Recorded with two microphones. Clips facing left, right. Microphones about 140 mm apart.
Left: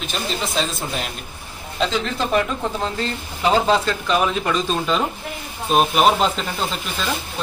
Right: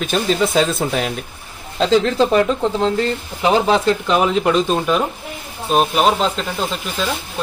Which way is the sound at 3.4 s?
15° right (ahead or behind).